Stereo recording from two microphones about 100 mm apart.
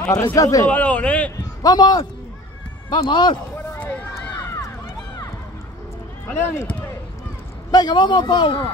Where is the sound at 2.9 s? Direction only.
50° left (ahead or behind).